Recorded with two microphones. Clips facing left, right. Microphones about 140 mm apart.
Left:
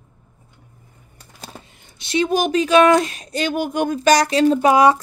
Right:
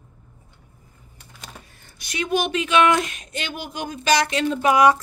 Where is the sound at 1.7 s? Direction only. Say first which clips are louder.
Left 10 dB; 20° left (ahead or behind).